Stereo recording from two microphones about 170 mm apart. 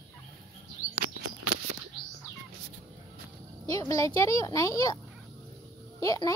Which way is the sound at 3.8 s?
20° left (ahead or behind).